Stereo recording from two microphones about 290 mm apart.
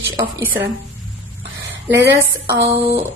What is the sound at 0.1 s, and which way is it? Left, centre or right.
Speech, centre.